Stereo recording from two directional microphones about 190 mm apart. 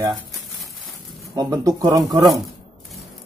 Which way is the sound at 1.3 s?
20° right (ahead or behind).